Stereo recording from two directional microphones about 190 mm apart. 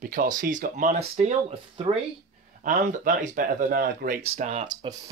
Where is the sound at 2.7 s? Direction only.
45° right (ahead or behind).